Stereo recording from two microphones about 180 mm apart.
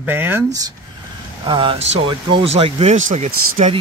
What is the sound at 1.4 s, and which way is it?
Speech, 25° right (ahead or behind).